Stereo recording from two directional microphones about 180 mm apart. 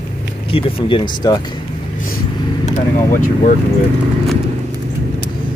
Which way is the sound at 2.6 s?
45° left (ahead or behind).